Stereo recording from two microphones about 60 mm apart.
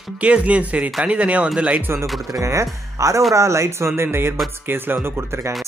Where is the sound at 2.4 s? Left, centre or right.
Right.